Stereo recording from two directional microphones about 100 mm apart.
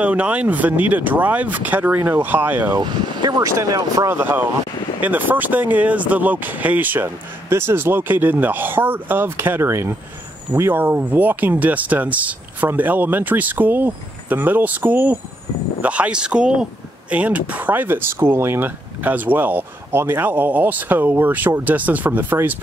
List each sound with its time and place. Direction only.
0.0 s speech: 15° right (ahead or behind)
2.7 s speech: 45° right (ahead or behind)
4.1 s speech: 20° right (ahead or behind)